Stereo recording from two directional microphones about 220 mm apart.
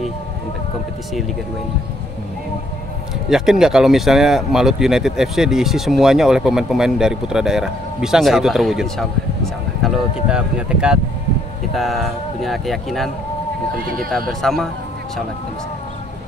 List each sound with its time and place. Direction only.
3.3 s speech: centre (ahead or behind)
13.8 s speech: 40° right (ahead or behind)
14.4 s speech: centre (ahead or behind)